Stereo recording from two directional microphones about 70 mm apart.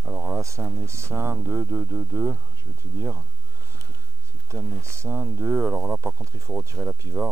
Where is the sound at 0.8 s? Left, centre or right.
Right.